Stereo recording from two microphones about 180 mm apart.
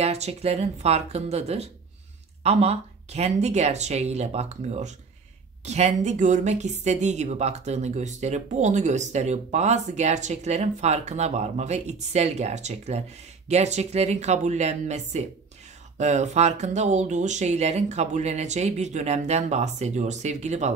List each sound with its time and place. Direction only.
0.0 s speech: 35° right (ahead or behind)